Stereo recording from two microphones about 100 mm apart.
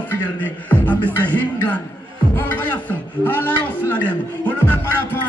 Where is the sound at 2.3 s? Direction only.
20° left (ahead or behind).